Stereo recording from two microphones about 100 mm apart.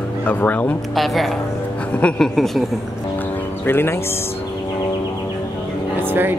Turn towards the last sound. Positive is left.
turn(degrees=-20)  # may be behind; listen again after turning